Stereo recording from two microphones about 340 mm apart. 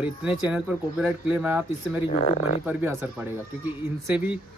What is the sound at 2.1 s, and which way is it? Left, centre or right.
Speech, left.